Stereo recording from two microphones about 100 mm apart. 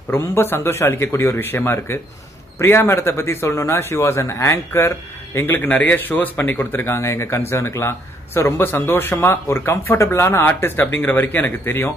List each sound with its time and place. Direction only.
0.1 s a man's voice: 20° left (ahead or behind)